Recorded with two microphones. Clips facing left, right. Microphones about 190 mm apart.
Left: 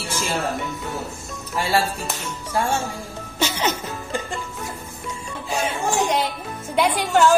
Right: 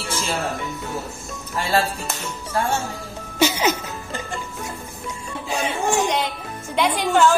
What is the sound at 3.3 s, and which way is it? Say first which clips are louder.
Music: right 4 dB; 10° right (ahead or behind).